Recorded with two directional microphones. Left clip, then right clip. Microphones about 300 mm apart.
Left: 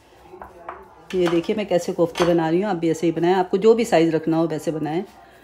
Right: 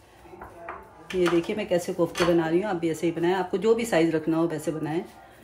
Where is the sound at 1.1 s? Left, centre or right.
Left.